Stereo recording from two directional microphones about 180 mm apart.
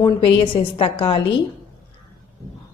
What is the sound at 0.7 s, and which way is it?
Speech, 30° left (ahead or behind).